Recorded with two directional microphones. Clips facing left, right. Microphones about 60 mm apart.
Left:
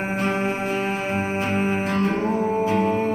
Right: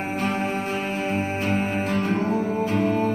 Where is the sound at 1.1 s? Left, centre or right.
Centre.